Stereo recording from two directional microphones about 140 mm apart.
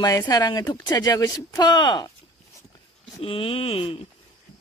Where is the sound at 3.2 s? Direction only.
40° left (ahead or behind).